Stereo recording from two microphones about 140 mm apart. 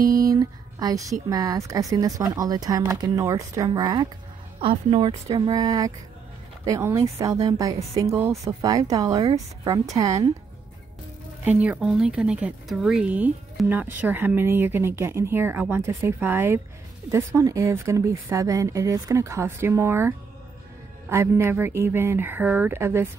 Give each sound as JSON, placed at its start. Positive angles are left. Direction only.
{"t": 0.0, "sound": "a sound", "side_deg": -25}
{"t": 1.3, "sound": "a woman's voice", "side_deg": -25}
{"t": 5.3, "sound": "a woman's voice", "side_deg": -25}
{"t": 11.4, "sound": "a woman's voice", "side_deg": -10}